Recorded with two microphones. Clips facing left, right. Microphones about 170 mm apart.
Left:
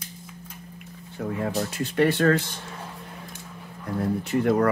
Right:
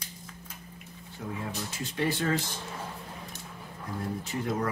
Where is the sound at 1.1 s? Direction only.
60° left (ahead or behind).